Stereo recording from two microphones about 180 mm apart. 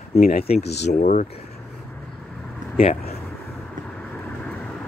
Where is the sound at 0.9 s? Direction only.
45° left (ahead or behind).